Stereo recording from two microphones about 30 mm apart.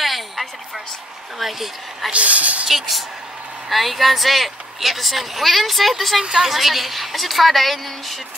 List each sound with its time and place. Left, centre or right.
0.0 s a sound: centre
1.4 s a woman's voice: centre
2.1 s speech: right
3.6 s a woman's voice: centre